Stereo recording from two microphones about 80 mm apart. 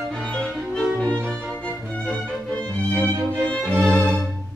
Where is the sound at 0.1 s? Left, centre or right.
Centre.